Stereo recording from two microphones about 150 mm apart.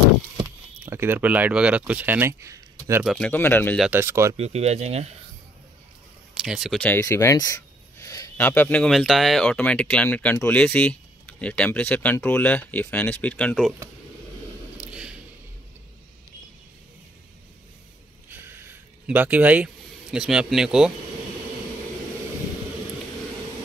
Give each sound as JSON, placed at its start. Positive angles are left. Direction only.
{"t": 0.8, "sound": "speech", "side_deg": -15}
{"t": 3.2, "sound": "speech", "side_deg": 10}
{"t": 3.9, "sound": "speech", "side_deg": -15}
{"t": 4.4, "sound": "speech", "side_deg": -45}
{"t": 6.3, "sound": "speech", "side_deg": -5}
{"t": 6.8, "sound": "a sound", "side_deg": 15}
{"t": 8.5, "sound": "speech", "side_deg": 10}
{"t": 14.9, "sound": "squish", "side_deg": -5}
{"t": 18.3, "sound": "a sound", "side_deg": -15}